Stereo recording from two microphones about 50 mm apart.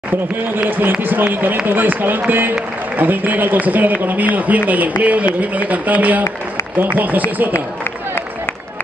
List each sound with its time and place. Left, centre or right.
0.6 s a man's voice: right